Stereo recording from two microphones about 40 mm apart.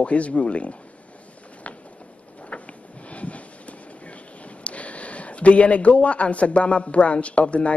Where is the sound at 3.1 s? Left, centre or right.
Left.